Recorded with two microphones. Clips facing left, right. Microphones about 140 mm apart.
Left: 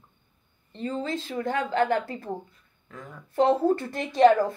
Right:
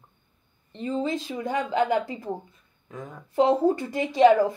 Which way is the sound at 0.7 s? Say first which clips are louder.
Right 3 dB; 15° right (ahead or behind).